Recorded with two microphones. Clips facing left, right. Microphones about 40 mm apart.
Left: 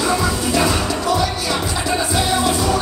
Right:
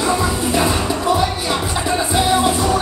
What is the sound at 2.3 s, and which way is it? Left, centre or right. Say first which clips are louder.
Music: right 2 dB; right.